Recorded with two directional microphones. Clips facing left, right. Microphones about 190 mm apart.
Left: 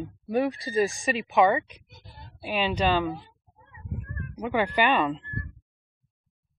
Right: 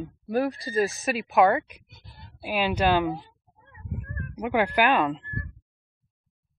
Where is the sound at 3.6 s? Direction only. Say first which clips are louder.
Right 1 dB; 50° right (ahead or behind).